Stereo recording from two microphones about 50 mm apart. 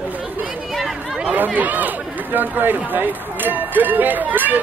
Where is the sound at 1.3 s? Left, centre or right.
Right.